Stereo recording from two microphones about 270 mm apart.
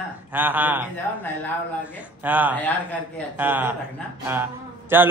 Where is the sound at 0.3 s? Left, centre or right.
Centre.